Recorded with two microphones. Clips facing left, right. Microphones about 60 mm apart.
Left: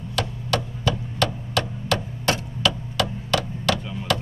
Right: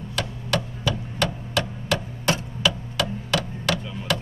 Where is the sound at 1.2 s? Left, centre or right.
Right.